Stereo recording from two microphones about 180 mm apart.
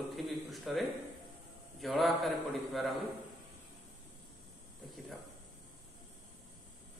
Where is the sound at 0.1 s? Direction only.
Centre (ahead or behind).